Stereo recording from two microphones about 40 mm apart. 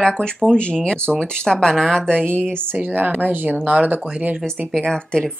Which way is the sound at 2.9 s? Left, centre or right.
Right.